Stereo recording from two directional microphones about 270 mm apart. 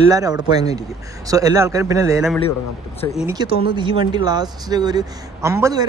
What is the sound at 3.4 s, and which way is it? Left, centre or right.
A man's voice, centre.